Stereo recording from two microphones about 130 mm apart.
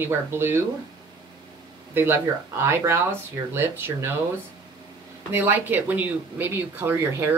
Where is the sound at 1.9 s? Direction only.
15° right (ahead or behind).